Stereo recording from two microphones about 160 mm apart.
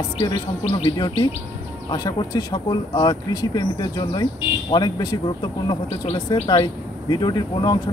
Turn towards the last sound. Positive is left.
turn(degrees=25)  # may be behind; listen again after turning